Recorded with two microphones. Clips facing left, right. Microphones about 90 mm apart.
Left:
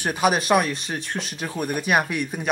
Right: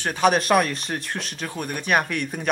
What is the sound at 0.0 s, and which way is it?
Speech, 5° left (ahead or behind).